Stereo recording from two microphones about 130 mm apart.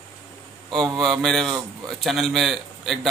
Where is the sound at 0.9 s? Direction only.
Centre (ahead or behind).